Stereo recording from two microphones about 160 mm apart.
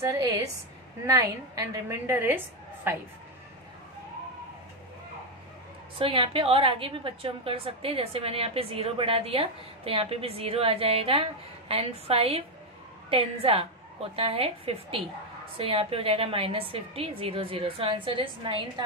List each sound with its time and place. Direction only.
0.0 s a woman's voice: 20° right (ahead or behind)
5.9 s a woman's voice: 35° right (ahead or behind)